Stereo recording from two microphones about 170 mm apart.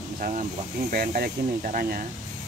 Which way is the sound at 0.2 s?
45° right (ahead or behind).